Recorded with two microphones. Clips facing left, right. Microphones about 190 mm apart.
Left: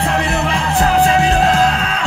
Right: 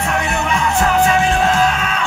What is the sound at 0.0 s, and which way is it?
Music, 30° left (ahead or behind).